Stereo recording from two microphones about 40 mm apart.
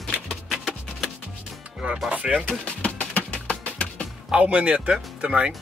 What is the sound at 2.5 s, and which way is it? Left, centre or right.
Music, left.